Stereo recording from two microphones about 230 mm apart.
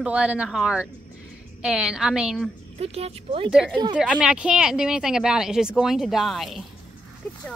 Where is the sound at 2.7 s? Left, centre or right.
Right.